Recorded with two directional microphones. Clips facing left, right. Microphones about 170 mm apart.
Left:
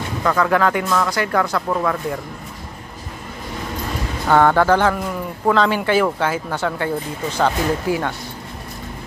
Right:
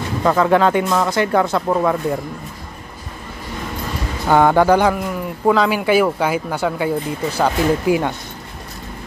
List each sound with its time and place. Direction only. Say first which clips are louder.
0.2 s speech: right 3 dB; 25° right (ahead or behind)
4.3 s a man's voice: right 2 dB; 15° right (ahead or behind)